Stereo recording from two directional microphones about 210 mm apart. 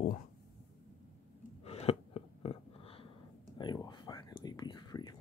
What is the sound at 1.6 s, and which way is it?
Gasp, 30° left (ahead or behind).